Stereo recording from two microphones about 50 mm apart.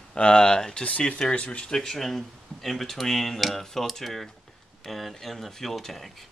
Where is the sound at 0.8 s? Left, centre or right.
Left.